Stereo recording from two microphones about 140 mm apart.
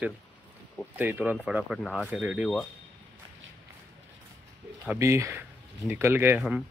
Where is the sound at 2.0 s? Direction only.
10° right (ahead or behind).